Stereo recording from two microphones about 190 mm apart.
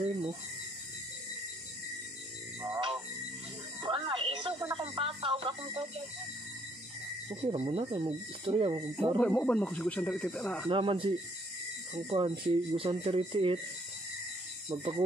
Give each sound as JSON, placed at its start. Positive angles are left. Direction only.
{"t": 0.0, "sound": "a sound", "side_deg": -25}
{"t": 2.6, "sound": "music", "side_deg": -25}
{"t": 7.2, "sound": "speech", "side_deg": -30}
{"t": 9.2, "sound": "speech", "side_deg": 5}
{"t": 10.7, "sound": "speech", "side_deg": -25}